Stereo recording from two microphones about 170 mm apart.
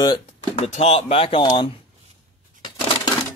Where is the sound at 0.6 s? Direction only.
40° left (ahead or behind).